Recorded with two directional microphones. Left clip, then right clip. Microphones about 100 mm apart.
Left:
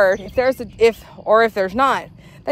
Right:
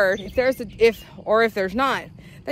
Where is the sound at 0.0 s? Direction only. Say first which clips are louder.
Left 4 dB; 25° left (ahead or behind).